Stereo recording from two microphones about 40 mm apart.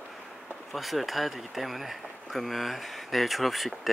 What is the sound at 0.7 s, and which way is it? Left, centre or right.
Speech, centre.